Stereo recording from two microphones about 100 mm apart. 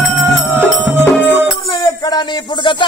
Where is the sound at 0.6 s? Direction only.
20° right (ahead or behind).